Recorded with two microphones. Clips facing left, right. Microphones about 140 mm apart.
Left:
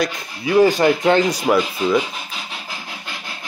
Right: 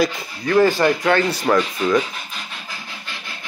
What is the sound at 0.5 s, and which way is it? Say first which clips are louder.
Speech: left 2 dB; 15° left (ahead or behind).